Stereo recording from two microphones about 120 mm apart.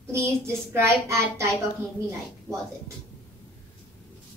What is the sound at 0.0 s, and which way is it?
Child singing, 20° right (ahead or behind).